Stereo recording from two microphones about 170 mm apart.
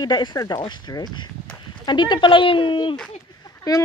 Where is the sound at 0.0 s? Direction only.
25° left (ahead or behind).